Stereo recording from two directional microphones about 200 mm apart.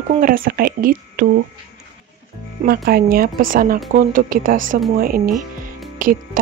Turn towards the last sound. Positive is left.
turn(degrees=-45)  # may be behind; listen again after turning